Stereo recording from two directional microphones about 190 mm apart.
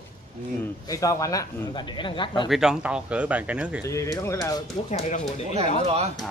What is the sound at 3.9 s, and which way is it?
Speech, 15° left (ahead or behind).